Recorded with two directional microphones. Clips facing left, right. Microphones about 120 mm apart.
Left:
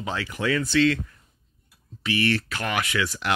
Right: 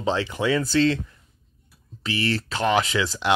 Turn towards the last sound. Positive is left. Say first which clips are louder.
# right 3 dB
turn(degrees=-25)  # may be behind; listen again after turning